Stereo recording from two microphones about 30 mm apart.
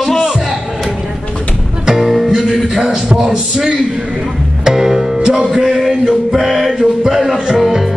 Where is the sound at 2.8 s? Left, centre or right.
Right.